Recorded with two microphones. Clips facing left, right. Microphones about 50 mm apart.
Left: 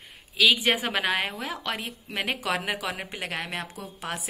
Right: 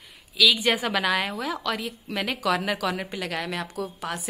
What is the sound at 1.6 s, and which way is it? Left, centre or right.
Speech, left.